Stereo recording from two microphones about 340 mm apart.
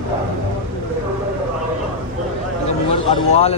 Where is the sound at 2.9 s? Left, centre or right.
Centre.